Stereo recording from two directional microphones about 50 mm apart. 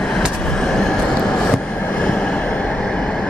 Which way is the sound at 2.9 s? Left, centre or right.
Centre.